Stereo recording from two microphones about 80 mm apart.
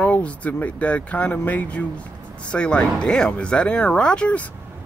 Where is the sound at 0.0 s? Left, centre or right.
Centre.